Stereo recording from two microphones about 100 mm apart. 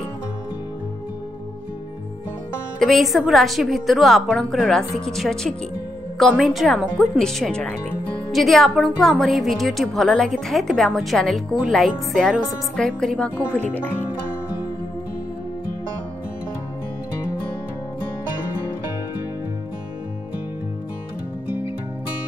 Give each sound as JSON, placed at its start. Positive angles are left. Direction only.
{"t": 2.8, "sound": "a woman's voice", "side_deg": 0}